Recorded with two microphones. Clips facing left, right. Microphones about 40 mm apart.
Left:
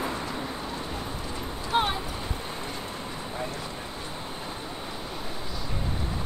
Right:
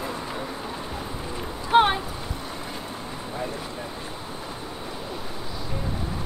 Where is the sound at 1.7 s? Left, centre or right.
Right.